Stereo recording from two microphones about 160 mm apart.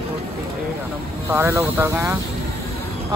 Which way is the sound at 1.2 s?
15° right (ahead or behind).